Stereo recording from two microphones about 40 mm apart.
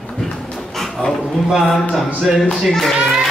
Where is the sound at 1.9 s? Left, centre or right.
Centre.